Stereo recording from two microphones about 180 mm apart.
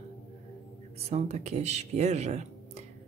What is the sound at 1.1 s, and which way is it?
Speech, 35° right (ahead or behind).